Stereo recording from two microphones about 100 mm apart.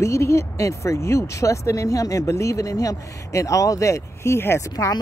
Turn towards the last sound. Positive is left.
turn(degrees=30)  # may be behind; listen again after turning